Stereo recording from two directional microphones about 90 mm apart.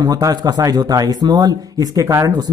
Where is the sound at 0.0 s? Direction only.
45° right (ahead or behind).